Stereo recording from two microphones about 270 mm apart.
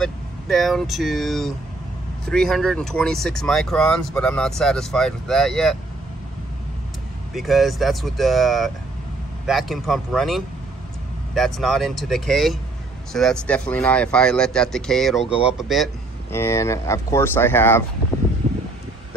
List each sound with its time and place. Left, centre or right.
0.0 s speech: centre
7.3 s speech: centre
18.4 s a sound: right